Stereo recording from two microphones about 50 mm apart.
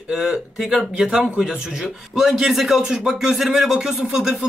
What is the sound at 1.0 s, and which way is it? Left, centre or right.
A man's voice, centre.